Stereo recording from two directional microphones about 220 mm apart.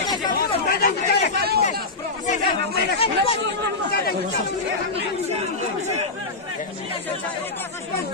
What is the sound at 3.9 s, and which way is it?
Speech, 45° left (ahead or behind).